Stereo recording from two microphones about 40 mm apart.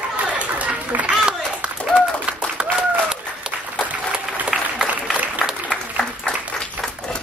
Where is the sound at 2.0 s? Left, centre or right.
Right.